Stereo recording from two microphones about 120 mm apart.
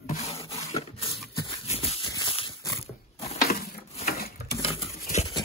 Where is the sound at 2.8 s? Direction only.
55° left (ahead or behind).